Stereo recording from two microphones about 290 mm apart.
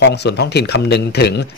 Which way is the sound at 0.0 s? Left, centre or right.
Left.